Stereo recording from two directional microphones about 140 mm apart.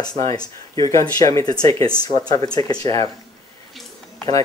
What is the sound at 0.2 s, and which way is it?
Speech, 25° left (ahead or behind).